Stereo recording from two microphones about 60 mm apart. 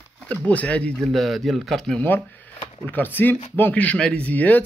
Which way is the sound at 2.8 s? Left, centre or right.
Left.